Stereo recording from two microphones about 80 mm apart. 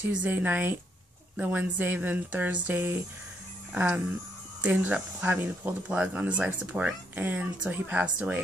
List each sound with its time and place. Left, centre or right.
0.1 s speech: right